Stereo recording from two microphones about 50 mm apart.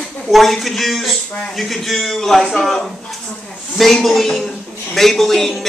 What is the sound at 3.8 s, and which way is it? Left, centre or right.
Speech, centre.